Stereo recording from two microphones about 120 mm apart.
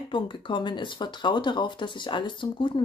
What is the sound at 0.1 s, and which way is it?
Speech, 45° left (ahead or behind).